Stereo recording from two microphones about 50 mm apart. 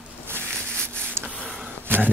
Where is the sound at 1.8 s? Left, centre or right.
Right.